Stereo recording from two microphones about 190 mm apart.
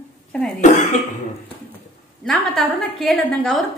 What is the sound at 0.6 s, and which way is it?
Speech, 40° left (ahead or behind).